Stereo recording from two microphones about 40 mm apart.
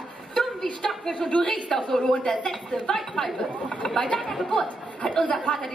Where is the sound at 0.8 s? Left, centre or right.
Centre.